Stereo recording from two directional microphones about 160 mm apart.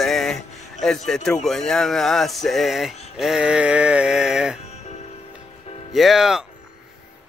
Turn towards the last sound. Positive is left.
turn(degrees=-5)  # may be behind; listen again after turning